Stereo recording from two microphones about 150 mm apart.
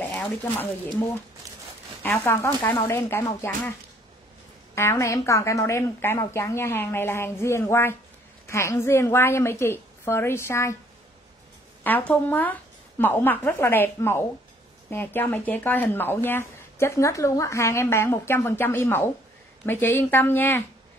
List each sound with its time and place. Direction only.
0.0 s speech: 10° left (ahead or behind)
4.7 s a woman's voice: 20° left (ahead or behind)
11.8 s speech: 10° left (ahead or behind)